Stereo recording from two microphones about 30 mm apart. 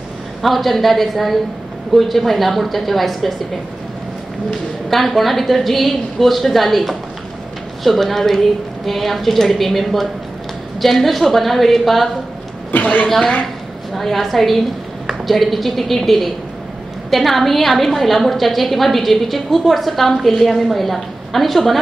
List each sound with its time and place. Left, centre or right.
0.4 s a woman's voice: centre
4.8 s a woman's voice: centre
12.8 s a woman's voice: left
13.9 s a woman's voice: centre